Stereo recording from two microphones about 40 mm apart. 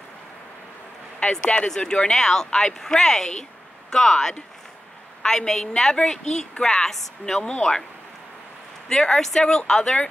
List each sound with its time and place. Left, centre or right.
1.3 s speech: centre
2.1 s speech: centre
8.8 s speech: centre